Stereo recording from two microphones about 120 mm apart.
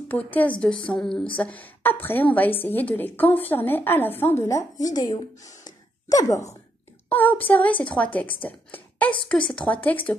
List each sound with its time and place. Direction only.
0.1 s a woman's voice: 15° left (ahead or behind); by 6.5 s 30° left (ahead or behind)
7.1 s a woman's voice: 15° left (ahead or behind)